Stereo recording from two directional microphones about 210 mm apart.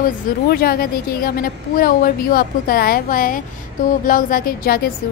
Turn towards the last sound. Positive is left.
turn(degrees=45)  # may be behind; listen again after turning